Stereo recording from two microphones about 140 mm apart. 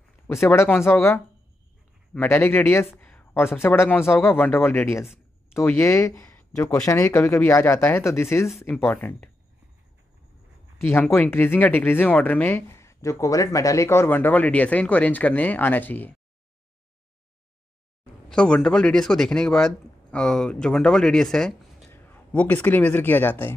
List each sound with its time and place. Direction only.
0.3 s speech: 20° left (ahead or behind)
10.8 s speech: 15° left (ahead or behind)
18.3 s speech: 5° left (ahead or behind)